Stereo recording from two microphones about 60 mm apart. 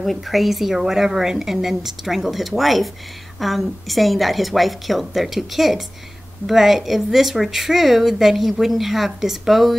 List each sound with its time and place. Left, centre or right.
0.0 s speech: centre